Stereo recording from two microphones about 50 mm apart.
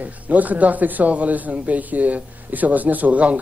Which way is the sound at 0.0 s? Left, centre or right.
Right.